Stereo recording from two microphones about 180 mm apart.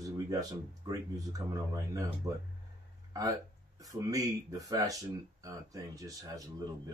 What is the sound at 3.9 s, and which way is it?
Speech, 20° right (ahead or behind).